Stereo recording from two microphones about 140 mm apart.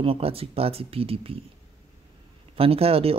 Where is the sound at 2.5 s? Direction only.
45° right (ahead or behind).